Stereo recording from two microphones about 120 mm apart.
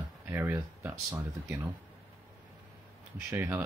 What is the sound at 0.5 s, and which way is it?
Speech, 30° right (ahead or behind).